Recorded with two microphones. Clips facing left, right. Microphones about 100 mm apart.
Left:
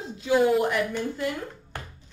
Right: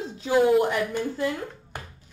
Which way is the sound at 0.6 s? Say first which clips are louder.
Right 1 dB; 30° right (ahead or behind).